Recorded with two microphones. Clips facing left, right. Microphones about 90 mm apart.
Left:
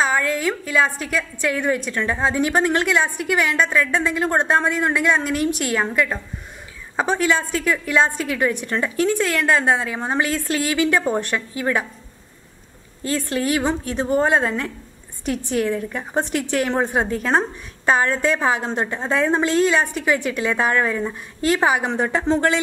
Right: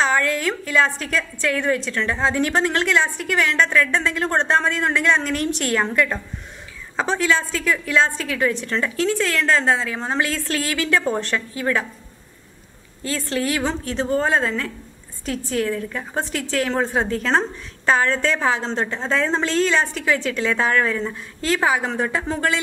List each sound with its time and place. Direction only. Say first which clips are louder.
0.0 s a woman's voice: even; 5° left (ahead or behind)
7.0 s a woman's voice: left 1 dB; 15° left (ahead or behind)
13.0 s a woman's voice: left 1 dB; 20° left (ahead or behind)